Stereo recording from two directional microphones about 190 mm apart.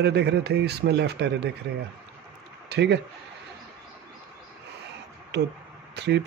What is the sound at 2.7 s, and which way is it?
Speech, 60° right (ahead or behind).